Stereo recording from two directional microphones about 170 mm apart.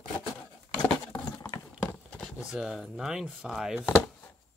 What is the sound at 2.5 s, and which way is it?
Speech, 5° right (ahead or behind).